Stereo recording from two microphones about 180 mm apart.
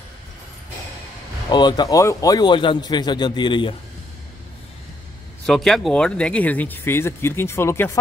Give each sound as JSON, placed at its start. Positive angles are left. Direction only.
{"t": 1.5, "sound": "speech", "side_deg": 25}
{"t": 5.5, "sound": "speech", "side_deg": 0}